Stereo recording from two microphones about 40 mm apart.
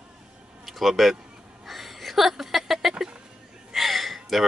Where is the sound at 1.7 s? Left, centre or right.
Centre.